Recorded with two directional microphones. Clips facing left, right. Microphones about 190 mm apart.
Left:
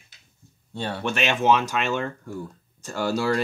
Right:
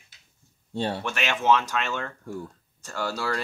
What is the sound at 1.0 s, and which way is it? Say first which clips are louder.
Speech: left 5 dB; 20° left (ahead or behind).